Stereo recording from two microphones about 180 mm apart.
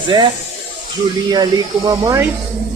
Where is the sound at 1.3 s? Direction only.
20° right (ahead or behind).